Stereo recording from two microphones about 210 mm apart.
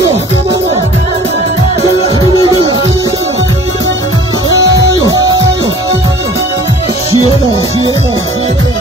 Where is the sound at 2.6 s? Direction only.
25° right (ahead or behind).